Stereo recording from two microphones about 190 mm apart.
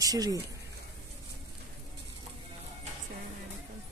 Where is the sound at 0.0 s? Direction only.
20° right (ahead or behind).